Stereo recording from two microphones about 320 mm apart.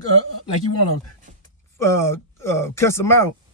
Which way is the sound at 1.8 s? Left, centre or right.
Centre.